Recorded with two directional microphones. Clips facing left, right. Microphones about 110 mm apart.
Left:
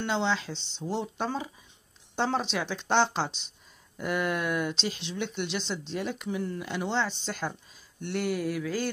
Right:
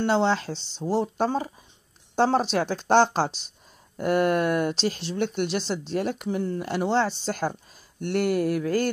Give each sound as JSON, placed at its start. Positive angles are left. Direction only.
{"t": 0.0, "sound": "speech", "side_deg": -45}